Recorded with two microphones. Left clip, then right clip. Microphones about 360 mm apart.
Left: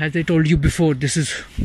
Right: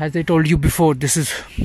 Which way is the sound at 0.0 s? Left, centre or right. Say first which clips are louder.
Right 2 dB; centre.